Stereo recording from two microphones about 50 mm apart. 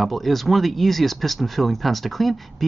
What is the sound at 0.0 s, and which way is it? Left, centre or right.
Speech, centre.